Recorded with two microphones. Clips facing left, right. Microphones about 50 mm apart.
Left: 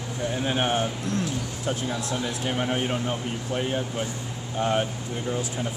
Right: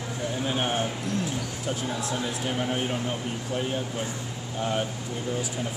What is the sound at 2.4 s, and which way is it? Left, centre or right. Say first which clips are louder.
Speech: left 3 dB; left.